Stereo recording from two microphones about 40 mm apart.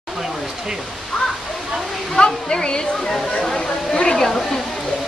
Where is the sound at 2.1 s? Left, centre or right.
Centre.